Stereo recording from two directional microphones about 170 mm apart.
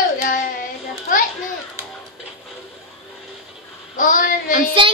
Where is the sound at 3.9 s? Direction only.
50° left (ahead or behind).